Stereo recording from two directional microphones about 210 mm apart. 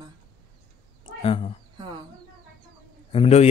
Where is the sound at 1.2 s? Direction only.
25° left (ahead or behind).